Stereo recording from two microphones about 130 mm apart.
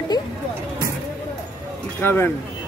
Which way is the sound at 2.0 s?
15° left (ahead or behind).